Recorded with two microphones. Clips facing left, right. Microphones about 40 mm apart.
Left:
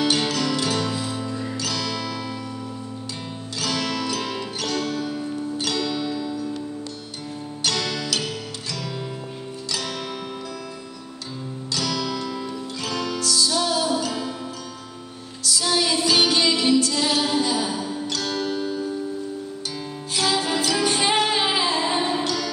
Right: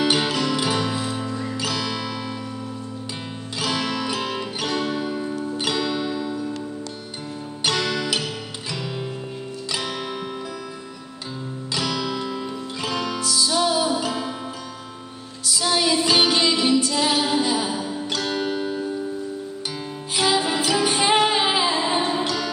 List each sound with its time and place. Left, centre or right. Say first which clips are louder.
0.0 s music: right 1 dB; centre
3.5 s music: right 1 dB; centre
7.6 s music: right 3 dB; centre
9.7 s music: right 1 dB; centre
11.7 s music: right 1 dB; centre
15.4 s music: right 1 dB; centre
20.2 s music: right 2 dB; centre